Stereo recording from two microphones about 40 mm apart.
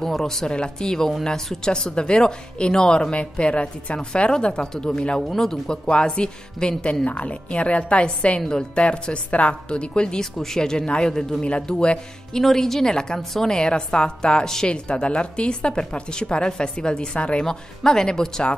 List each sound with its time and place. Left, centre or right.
0.0 s speech: centre
0.5 s speech: left
5.3 s speech: centre
5.9 s speech: left
7.1 s speech: left
8.4 s speech: centre